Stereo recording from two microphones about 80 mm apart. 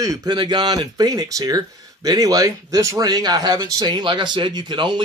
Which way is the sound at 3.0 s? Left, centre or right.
Right.